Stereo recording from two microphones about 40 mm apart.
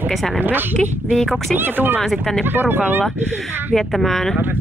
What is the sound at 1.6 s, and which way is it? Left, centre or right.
Speech, right.